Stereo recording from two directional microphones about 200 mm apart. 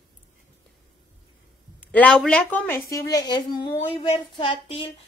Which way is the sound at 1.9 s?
5° left (ahead or behind).